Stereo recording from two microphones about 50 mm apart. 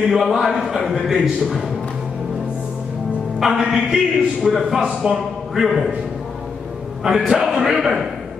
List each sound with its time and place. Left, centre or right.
0.1 s a man's voice: centre
3.3 s a man's voice: centre
5.0 s a man's voice: right
5.5 s a man's voice: centre
7.0 s a man's voice: centre